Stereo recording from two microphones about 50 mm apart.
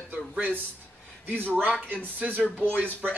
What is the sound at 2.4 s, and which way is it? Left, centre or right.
Speech, left.